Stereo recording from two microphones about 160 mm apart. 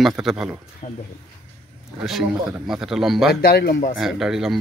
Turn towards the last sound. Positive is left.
turn(degrees=0)  # may be behind; listen again after turning